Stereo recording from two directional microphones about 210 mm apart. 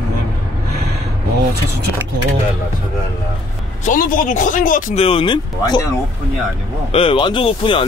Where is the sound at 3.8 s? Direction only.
40° left (ahead or behind).